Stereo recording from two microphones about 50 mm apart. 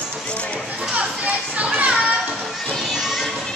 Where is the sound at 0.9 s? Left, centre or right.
Right.